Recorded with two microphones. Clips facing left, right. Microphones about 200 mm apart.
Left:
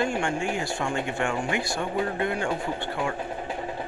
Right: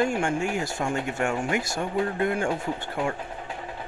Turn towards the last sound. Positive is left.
turn(degrees=-45)  # may be behind; listen again after turning